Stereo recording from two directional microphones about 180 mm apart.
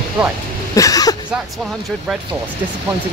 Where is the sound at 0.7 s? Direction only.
20° left (ahead or behind).